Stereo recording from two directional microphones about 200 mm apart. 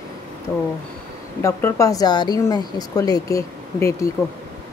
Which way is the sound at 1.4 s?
15° left (ahead or behind).